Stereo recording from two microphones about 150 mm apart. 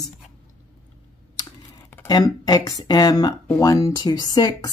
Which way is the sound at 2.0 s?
25° left (ahead or behind).